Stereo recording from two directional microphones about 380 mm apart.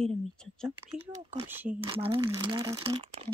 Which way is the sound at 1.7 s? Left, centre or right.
Centre.